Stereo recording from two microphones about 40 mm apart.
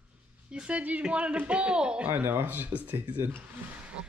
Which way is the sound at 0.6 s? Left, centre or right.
Right.